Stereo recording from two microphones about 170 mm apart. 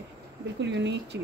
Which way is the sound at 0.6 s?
90° right.